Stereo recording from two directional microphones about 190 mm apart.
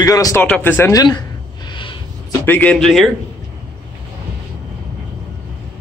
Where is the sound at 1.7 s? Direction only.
25° left (ahead or behind).